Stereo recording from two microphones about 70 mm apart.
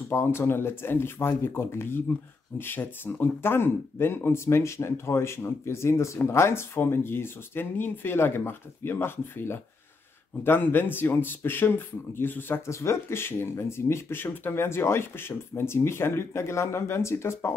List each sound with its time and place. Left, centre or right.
0.1 s speech: left
12.6 s speech: left